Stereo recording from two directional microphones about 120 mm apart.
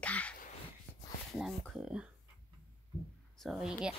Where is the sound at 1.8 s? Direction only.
5° right (ahead or behind).